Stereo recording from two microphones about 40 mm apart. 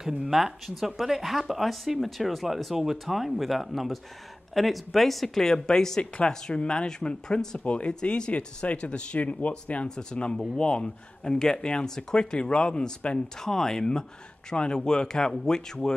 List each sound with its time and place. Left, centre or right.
0.0 s speech: centre; by 9.5 s left
9.8 s speech: left
13.4 s speech: centre